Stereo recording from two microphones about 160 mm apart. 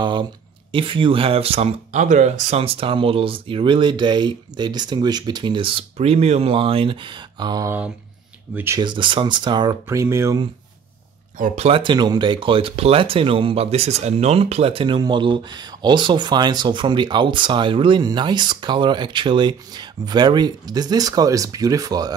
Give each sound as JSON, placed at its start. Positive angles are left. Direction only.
{"t": 0.0, "sound": "speech", "side_deg": -30}
{"t": 8.8, "sound": "speech", "side_deg": -30}
{"t": 9.8, "sound": "speech", "side_deg": -15}
{"t": 11.3, "sound": "speech", "side_deg": -50}